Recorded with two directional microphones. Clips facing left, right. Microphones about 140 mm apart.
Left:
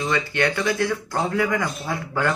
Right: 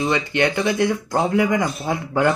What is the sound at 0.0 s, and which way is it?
Speech, 20° right (ahead or behind).